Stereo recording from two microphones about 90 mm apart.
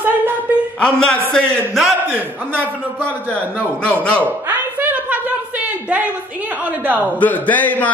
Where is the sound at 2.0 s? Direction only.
20° right (ahead or behind).